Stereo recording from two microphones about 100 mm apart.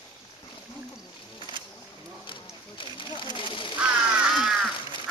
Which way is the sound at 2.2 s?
60° left (ahead or behind).